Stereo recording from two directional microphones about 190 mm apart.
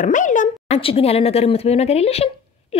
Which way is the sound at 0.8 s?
30° left (ahead or behind).